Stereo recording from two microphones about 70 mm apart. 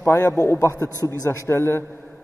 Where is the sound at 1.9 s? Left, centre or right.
Left.